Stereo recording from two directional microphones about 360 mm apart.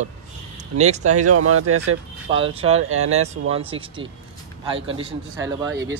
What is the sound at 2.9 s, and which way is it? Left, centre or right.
Speech, right.